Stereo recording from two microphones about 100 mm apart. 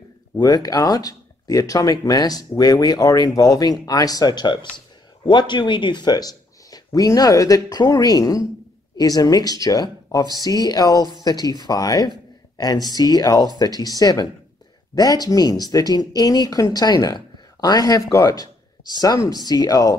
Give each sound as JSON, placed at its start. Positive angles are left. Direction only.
{"t": 0.4, "sound": "speech", "side_deg": 40}